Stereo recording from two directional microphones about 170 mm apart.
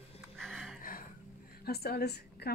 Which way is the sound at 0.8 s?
55° left (ahead or behind).